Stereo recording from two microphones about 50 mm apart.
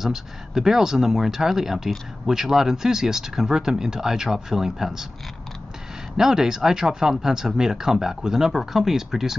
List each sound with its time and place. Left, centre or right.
0.0 s speech: centre
6.1 s speech: centre